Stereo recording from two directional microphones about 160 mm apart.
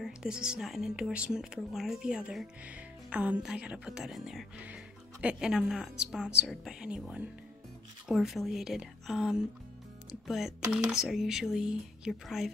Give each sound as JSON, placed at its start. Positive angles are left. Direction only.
{"t": 0.0, "sound": "speech", "side_deg": -5}